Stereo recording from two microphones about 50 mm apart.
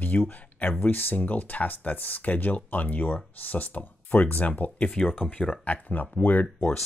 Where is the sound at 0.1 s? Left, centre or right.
Left.